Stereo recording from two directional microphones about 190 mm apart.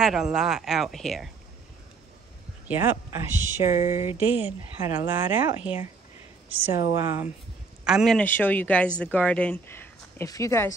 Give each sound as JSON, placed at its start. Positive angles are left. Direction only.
{"t": 0.0, "sound": "speech", "side_deg": -5}
{"t": 2.7, "sound": "speech", "side_deg": -10}
{"t": 7.8, "sound": "speech", "side_deg": 0}